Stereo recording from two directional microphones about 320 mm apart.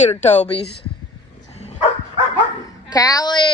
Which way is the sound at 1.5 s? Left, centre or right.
Centre.